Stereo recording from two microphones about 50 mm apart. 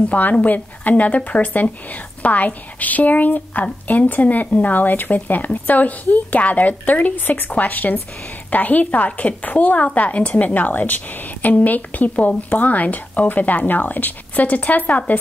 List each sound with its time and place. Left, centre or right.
0.1 s speech: left